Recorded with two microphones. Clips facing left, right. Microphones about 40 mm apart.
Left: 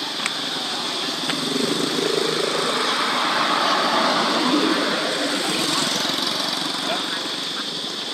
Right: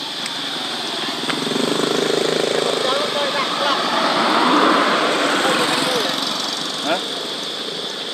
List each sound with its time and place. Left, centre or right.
3.3 s vehicle: centre
3.7 s vehicle: centre
4.2 s vehicle: right
4.5 s vehicle: right
5.8 s lawn mower: centre